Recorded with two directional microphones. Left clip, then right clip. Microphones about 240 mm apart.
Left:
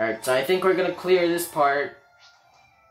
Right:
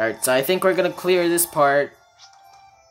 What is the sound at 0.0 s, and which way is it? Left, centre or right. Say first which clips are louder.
Speech: right 3 dB; right.